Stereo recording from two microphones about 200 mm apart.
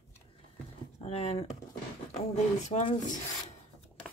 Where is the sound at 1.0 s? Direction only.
30° left (ahead or behind).